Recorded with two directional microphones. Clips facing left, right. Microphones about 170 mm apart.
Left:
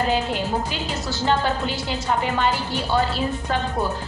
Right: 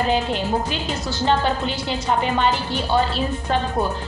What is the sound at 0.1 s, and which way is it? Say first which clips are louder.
Speech: right 2 dB; 20° right (ahead or behind).